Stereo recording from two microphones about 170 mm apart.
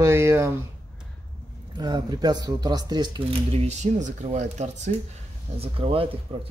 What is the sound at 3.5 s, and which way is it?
Speech, 40° right (ahead or behind).